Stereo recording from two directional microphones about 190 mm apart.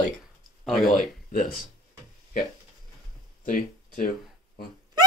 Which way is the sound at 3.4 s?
45° left (ahead or behind).